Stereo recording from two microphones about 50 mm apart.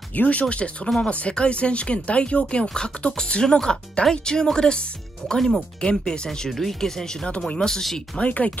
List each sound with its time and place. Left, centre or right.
0.1 s speech: left; by 7.1 s centre
7.2 s speech: left
7.6 s speech: centre
8.2 s speech: left